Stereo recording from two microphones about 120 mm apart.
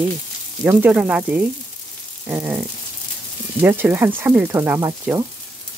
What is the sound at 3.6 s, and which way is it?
Speech, 15° right (ahead or behind).